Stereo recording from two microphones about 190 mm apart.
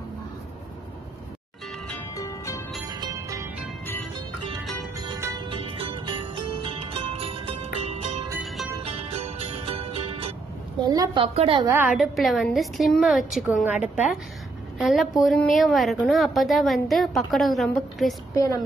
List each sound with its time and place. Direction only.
1.9 s music: 10° left (ahead or behind)
2.9 s music: 20° right (ahead or behind)
3.8 s music: 10° left (ahead or behind)
5.0 s music: 25° right (ahead or behind)
8.3 s music: 10° right (ahead or behind)
8.8 s music: 30° right (ahead or behind)
10.8 s a woman's voice: 20° right (ahead or behind)
11.6 s a woman's voice: 10° right (ahead or behind)